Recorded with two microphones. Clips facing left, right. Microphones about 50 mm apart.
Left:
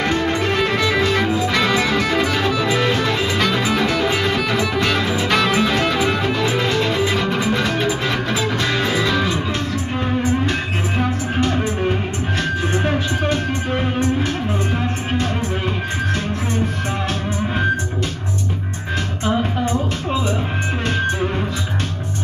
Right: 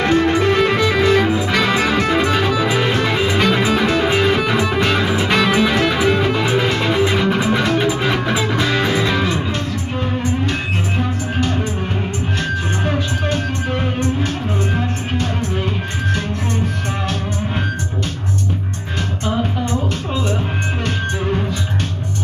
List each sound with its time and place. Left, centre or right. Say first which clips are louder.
0.0 s music: right 4 dB; centre